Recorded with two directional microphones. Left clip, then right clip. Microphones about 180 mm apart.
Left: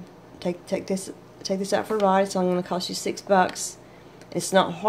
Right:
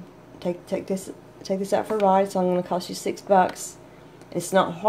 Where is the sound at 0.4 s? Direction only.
Centre (ahead or behind).